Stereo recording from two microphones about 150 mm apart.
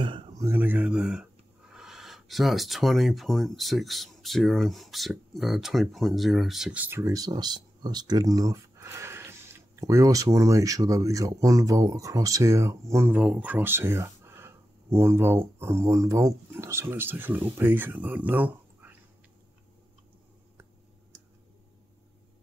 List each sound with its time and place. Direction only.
0.0 s speech: 30° right (ahead or behind); by 18.9 s 10° right (ahead or behind)